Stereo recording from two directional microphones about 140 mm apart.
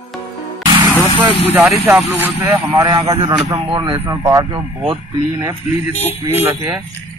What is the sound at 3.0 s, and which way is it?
A man's voice, 45° right (ahead or behind).